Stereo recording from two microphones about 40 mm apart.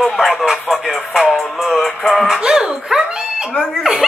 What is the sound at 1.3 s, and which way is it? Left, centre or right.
Music, centre.